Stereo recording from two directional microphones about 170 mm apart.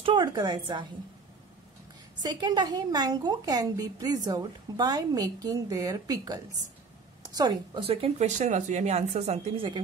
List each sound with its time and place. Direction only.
0.0 s a woman's voice: 25° right (ahead or behind)
2.2 s a woman's voice: 25° right (ahead or behind)
7.8 s speech: 35° right (ahead or behind)